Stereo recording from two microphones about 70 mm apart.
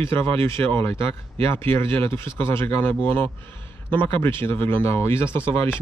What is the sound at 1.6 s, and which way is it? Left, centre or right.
Speech, left.